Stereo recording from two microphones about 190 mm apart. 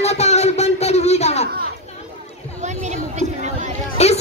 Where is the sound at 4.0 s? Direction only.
35° left (ahead or behind).